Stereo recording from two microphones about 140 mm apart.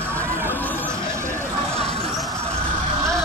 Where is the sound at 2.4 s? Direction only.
20° right (ahead or behind).